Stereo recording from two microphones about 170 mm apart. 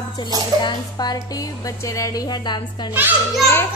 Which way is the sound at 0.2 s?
30° left (ahead or behind).